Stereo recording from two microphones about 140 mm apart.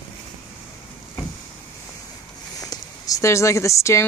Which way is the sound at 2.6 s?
25° left (ahead or behind).